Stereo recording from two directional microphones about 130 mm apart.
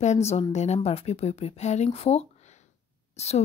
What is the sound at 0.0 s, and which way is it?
Speech, 60° left (ahead or behind).